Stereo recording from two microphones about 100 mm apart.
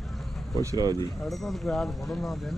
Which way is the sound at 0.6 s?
35° right (ahead or behind).